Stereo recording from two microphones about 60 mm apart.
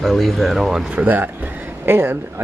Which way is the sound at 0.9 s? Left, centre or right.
Right.